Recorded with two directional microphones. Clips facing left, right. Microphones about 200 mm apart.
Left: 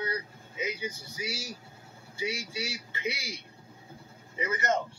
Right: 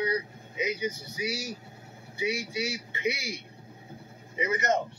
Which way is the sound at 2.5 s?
20° right (ahead or behind).